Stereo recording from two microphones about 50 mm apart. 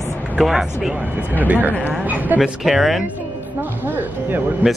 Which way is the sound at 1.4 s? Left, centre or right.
Right.